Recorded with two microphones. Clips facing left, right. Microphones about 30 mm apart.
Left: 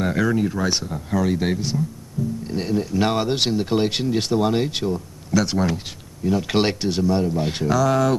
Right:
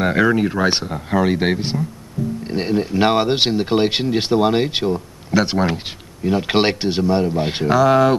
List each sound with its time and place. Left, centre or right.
0.0 s speech: right